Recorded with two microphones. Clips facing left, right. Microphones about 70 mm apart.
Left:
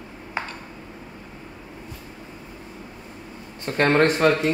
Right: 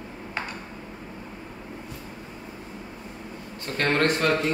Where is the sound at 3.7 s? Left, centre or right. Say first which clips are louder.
Left 5 dB; left.